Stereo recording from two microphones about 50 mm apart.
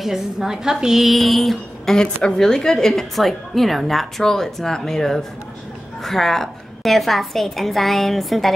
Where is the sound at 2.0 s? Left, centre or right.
Centre.